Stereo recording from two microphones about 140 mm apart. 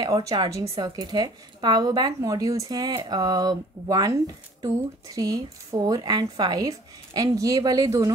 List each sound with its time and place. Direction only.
0.0 s a woman's voice: 25° right (ahead or behind)